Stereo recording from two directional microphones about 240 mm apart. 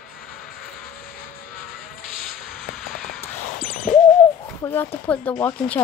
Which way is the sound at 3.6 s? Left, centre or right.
Left.